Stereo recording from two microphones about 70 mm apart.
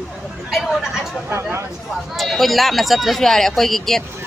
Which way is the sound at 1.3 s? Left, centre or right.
Right.